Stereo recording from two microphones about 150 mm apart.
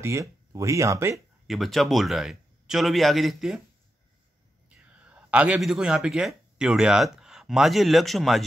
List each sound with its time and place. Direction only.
0.0 s speech: 20° right (ahead or behind)
1.5 s a man's voice: centre (ahead or behind)
4.6 s speech: 10° right (ahead or behind)